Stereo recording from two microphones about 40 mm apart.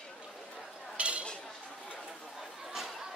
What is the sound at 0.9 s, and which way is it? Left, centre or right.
Dishes, right.